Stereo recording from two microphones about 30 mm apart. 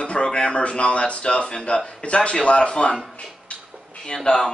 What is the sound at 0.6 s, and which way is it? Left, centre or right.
A man's voice, left.